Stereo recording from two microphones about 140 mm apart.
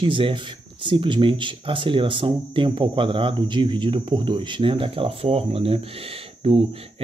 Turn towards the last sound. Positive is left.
turn(degrees=-40)  # may be behind; listen again after turning